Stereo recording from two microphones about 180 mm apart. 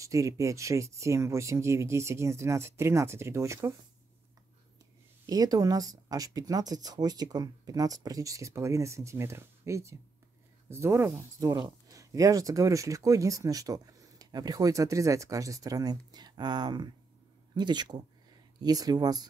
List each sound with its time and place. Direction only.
0.0 s speech: 15° right (ahead or behind)
5.2 s speech: 20° right (ahead or behind)